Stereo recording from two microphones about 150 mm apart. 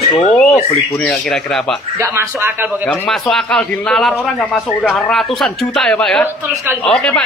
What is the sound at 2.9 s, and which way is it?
A man's voice, centre (ahead or behind).